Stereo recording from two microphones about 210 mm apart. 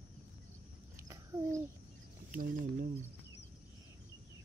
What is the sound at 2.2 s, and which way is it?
Speech, 40° right (ahead or behind).